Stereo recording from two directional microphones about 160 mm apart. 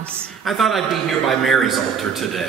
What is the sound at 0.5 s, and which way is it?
A man's voice, centre (ahead or behind).